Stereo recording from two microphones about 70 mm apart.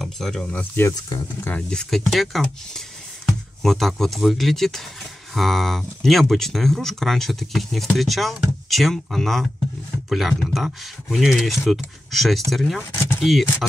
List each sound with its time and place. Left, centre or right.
0.0 s speech: centre
0.4 s speech: centre